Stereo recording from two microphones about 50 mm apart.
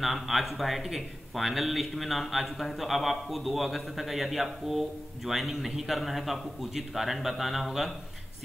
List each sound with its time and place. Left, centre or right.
0.0 s a man's voice: centre